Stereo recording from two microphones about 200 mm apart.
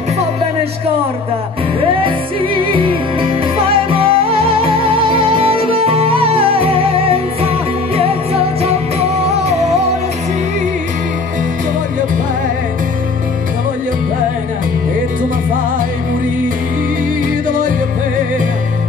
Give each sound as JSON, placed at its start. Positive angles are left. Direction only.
{"t": 1.8, "sound": "music", "side_deg": -25}
{"t": 17.5, "sound": "music", "side_deg": -40}